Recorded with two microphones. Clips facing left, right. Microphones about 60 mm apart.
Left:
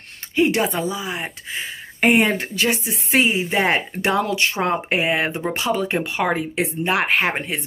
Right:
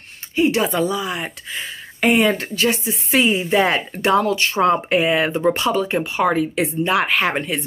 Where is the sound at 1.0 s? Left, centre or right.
Centre.